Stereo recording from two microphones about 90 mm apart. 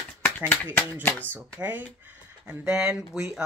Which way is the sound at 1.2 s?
20° right (ahead or behind).